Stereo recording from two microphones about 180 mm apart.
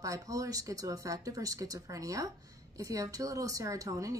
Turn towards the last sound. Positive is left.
turn(degrees=-20)  # may be behind; listen again after turning